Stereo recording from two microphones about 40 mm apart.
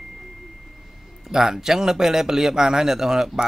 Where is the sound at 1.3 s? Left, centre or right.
Centre.